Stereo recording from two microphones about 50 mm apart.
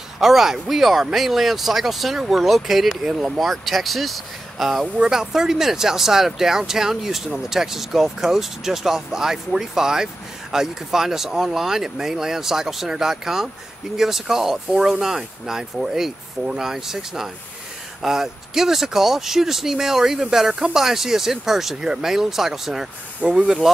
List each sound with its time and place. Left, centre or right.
0.2 s speech: centre
3.0 s speech: centre
3.3 s speech: centre
4.9 s speech: centre
23.2 s speech: right